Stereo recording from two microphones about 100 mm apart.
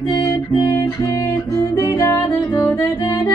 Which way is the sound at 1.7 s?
35° left (ahead or behind).